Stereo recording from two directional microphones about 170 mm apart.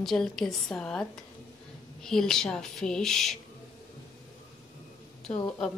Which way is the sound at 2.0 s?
5° left (ahead or behind).